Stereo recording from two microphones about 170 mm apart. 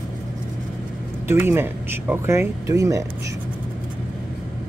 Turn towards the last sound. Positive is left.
turn(degrees=-20)  # may be behind; listen again after turning